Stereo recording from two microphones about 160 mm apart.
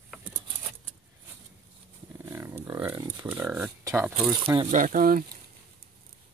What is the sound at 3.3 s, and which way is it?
Speech, 10° right (ahead or behind).